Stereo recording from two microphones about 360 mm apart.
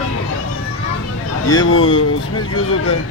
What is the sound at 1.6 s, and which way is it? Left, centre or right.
Speech, left.